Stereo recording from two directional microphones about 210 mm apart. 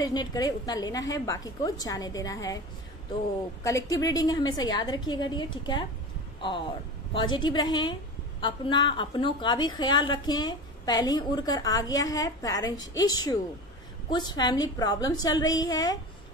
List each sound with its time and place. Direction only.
0.0 s a woman's voice: 20° left (ahead or behind)
3.6 s a woman's voice: 15° left (ahead or behind)
7.2 s a woman's voice: 20° left (ahead or behind)